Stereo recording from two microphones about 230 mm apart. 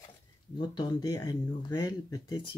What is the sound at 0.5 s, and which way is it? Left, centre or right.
Speech, centre.